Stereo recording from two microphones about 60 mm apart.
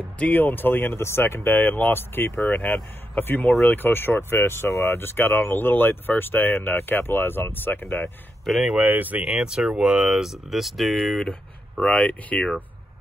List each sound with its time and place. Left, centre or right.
0.2 s speech: left
8.5 s speech: centre
8.7 s speech: right
9.2 s speech: centre
11.9 s speech: left